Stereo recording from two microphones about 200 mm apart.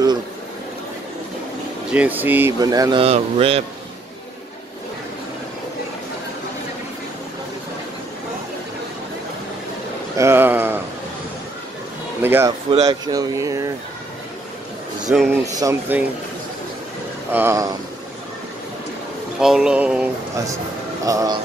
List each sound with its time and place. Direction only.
1.9 s speech: 5° right (ahead or behind); by 3.6 s 30° right (ahead or behind)
10.1 s a sound: 10° right (ahead or behind)
12.2 s a sound: 10° right (ahead or behind)
12.8 s speech: 20° right (ahead or behind)
15.0 s a sound: centre (ahead or behind)
15.4 s speech: 15° right (ahead or behind)
17.3 s speech: 10° right (ahead or behind)
19.4 s speech: 5° right (ahead or behind)
21.0 s a man's voice: 15° right (ahead or behind)